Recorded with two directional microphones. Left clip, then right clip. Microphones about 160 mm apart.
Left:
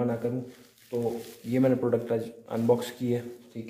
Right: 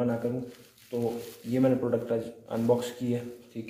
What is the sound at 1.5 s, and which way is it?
Speech, 40° left (ahead or behind).